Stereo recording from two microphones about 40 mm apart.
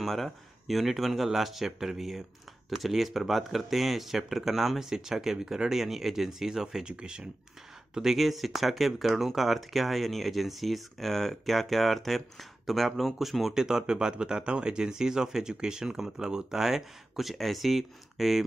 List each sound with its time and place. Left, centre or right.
0.0 s speech: centre
6.9 s speech: right
7.9 s speech: centre